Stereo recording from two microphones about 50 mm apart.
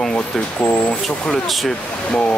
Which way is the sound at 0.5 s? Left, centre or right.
Left.